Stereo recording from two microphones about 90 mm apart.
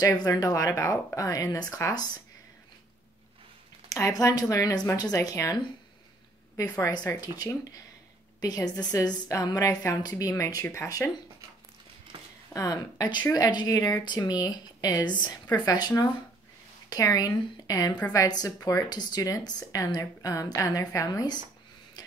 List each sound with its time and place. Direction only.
0.0 s speech: 45° left (ahead or behind)
3.9 s speech: 40° left (ahead or behind)
8.4 s speech: 45° left (ahead or behind)
12.5 s speech: 40° left (ahead or behind)
14.0 s speech: 50° left (ahead or behind)
16.9 s speech: 40° left (ahead or behind)